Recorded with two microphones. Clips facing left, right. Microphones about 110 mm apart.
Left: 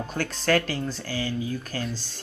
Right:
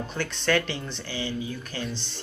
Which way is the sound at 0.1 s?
40° left (ahead or behind).